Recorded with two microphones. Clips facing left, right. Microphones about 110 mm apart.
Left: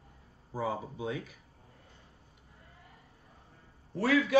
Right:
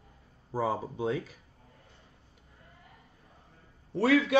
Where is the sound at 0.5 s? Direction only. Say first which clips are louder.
Right 4 dB; 35° right (ahead or behind).